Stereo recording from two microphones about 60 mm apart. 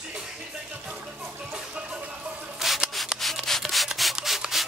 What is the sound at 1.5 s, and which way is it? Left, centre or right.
Music, centre.